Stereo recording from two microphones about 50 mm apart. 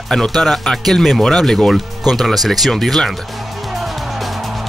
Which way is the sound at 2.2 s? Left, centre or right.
Centre.